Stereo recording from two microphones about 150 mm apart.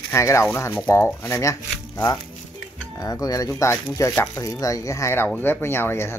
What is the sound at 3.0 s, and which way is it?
Speech, 25° left (ahead or behind).